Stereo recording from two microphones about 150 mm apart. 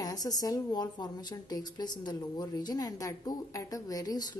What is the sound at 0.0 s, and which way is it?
A woman's voice, 25° left (ahead or behind).